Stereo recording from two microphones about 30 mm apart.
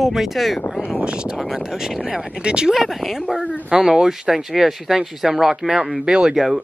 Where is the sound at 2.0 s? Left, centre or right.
Right.